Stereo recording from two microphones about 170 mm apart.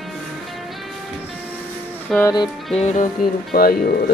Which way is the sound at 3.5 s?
60° left (ahead or behind).